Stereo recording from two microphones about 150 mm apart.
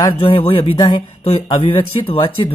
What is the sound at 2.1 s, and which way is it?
Speech, 35° left (ahead or behind).